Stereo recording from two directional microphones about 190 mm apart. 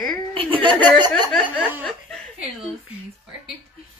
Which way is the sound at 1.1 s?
Centre (ahead or behind).